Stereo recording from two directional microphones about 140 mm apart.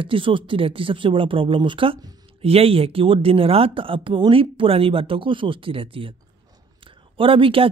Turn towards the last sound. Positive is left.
turn(degrees=-40)  # may be behind; listen again after turning